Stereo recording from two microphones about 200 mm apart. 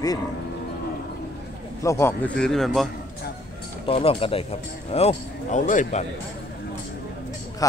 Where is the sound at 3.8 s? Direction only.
30° left (ahead or behind).